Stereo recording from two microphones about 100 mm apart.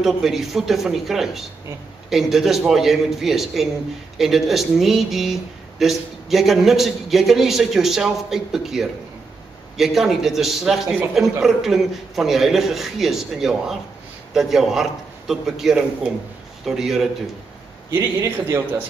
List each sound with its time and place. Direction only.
0.0 s speech: centre (ahead or behind)
17.9 s a man's voice: 30° right (ahead or behind)